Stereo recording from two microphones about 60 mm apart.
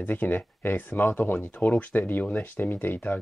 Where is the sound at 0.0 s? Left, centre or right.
Left.